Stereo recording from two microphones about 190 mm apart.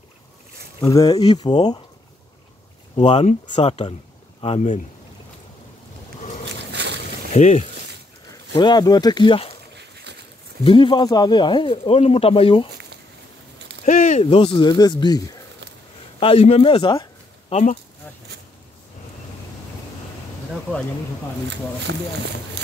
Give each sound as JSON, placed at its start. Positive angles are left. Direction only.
{"t": 0.7, "sound": "speech", "side_deg": 20}
{"t": 3.0, "sound": "speech", "side_deg": 35}
{"t": 6.7, "sound": "boat", "side_deg": -65}
{"t": 7.3, "sound": "speech", "side_deg": 35}
{"t": 8.5, "sound": "speech", "side_deg": 20}
{"t": 10.6, "sound": "speech", "side_deg": 25}
{"t": 13.8, "sound": "speech", "side_deg": 40}
{"t": 14.2, "sound": "speech", "side_deg": 25}
{"t": 21.9, "sound": "speech", "side_deg": -65}